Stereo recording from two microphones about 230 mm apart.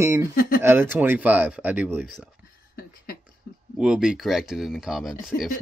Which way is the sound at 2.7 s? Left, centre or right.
Left.